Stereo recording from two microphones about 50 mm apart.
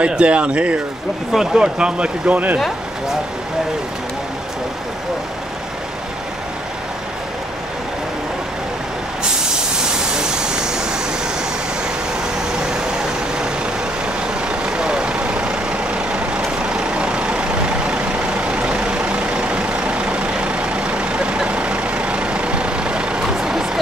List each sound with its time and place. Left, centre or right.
0.0 s speech: right
1.3 s speech: centre; by 2.6 s right
10.1 s vehicle: centre
14.2 s vehicle: centre